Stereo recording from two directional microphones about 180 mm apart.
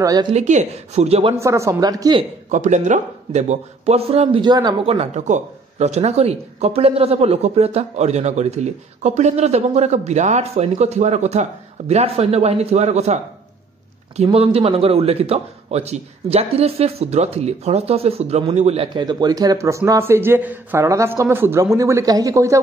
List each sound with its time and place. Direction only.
0.0 s a woman's voice: 20° right (ahead or behind)
0.3 s a man's voice: 40° right (ahead or behind)
1.4 s a woman's voice: 15° right (ahead or behind)
2.5 s a man's voice: 40° right (ahead or behind); by 22.6 s 15° right (ahead or behind)